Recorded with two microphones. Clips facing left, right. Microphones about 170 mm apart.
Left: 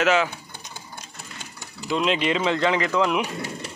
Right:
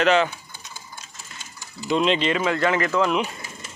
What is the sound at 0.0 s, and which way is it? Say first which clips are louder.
Speech: right 2 dB; 5° left (ahead or behind).